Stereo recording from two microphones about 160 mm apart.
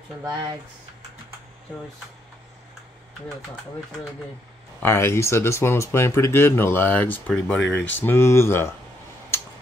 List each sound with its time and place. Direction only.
0.2 s speech: 30° right (ahead or behind)
4.8 s speech: 15° left (ahead or behind)